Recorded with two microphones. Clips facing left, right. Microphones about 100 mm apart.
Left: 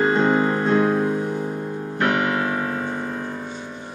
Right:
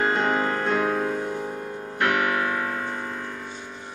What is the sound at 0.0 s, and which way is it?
Music, 15° left (ahead or behind).